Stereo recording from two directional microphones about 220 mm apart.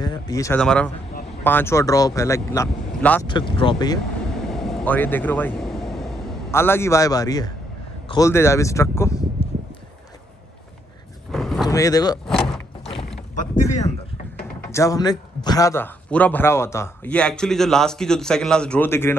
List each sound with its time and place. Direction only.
0.0 s speech: 15° left (ahead or behind)
0.6 s a man's voice: 5° left (ahead or behind)
3.3 s speech: 20° left (ahead or behind)
4.5 s vehicle: centre (ahead or behind)
6.5 s a man's voice: 10° left (ahead or behind)
11.3 s a sound: centre (ahead or behind)
11.6 s speech: 15° left (ahead or behind)
12.3 s door: centre (ahead or behind)
12.8 s rowboat: 30° left (ahead or behind)
14.7 s a man's voice: 15° left (ahead or behind)